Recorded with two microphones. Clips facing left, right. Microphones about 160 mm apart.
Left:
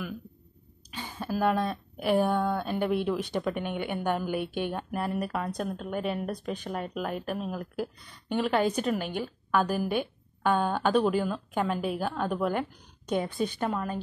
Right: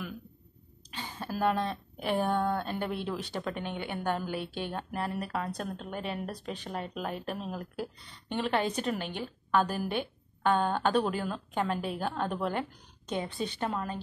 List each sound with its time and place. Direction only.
0.9 s a woman's voice: 10° left (ahead or behind)